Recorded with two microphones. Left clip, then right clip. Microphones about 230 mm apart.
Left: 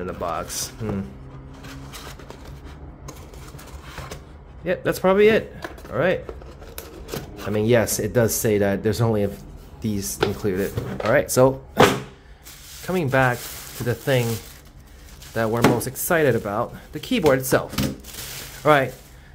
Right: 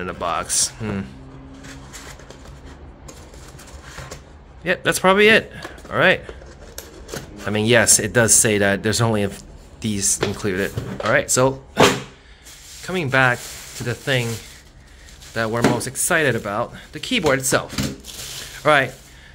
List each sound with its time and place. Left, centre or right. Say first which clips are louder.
0.0 s speech: right 3 dB; centre
4.6 s speech: right 3 dB; centre
7.4 s speech: right 3 dB; centre
12.8 s speech: right 2 dB; centre
15.3 s speech: even; centre